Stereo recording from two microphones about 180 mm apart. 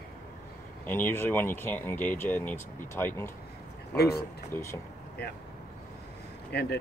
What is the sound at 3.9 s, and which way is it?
Speech, 60° left (ahead or behind).